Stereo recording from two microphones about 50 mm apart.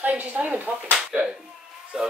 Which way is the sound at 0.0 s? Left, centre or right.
Right.